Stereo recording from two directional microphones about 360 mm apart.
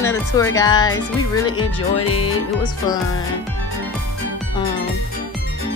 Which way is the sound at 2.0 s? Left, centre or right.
Left.